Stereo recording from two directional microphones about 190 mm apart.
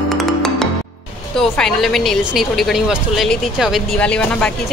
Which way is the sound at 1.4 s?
5° left (ahead or behind).